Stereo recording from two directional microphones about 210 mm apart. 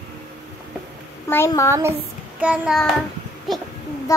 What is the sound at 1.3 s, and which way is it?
Speech, 15° left (ahead or behind).